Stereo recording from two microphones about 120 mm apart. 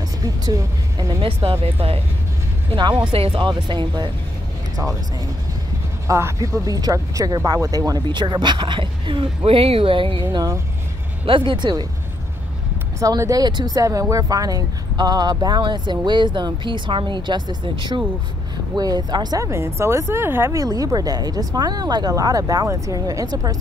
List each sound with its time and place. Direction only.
1.2 s speech: 50° right (ahead or behind)
2.7 s speech: 40° right (ahead or behind)
3.1 s speech: 50° right (ahead or behind)
6.0 s speech: 25° right (ahead or behind); by 10.2 s 50° right (ahead or behind)
10.3 s speech: 25° right (ahead or behind)
11.2 s speech: 45° right (ahead or behind)
13.0 s speech: 30° right (ahead or behind)